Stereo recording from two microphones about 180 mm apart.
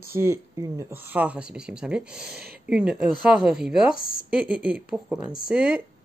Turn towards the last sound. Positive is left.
turn(degrees=-5)  # may be behind; listen again after turning